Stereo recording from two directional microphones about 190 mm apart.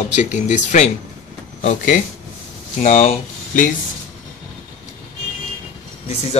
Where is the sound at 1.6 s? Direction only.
40° left (ahead or behind).